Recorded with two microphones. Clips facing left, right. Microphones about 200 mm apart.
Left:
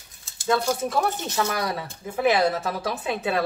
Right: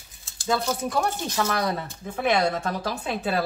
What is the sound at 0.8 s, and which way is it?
Speech, 5° left (ahead or behind).